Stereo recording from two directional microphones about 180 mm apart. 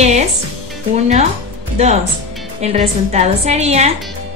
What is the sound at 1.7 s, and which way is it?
A woman's voice, 40° right (ahead or behind).